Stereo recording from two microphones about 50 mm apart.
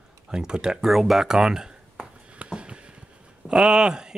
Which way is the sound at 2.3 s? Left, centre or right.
Right.